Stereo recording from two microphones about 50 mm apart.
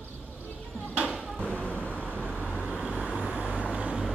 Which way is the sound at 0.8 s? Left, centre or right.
Right.